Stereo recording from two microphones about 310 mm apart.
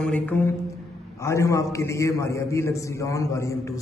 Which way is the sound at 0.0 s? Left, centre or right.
Centre.